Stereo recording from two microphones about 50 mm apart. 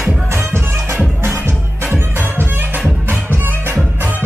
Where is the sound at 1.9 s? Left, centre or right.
Right.